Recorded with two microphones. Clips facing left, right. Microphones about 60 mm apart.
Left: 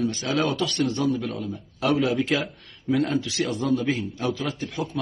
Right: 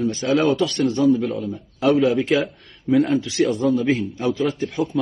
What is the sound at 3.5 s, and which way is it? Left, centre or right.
A man's voice, centre.